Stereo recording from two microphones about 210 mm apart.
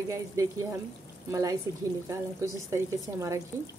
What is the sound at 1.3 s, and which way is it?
Speech, 15° right (ahead or behind).